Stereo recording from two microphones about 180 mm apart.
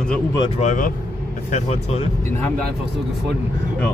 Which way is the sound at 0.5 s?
45° left (ahead or behind).